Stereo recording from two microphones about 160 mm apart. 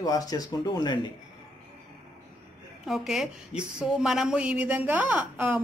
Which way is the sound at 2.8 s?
Centre (ahead or behind).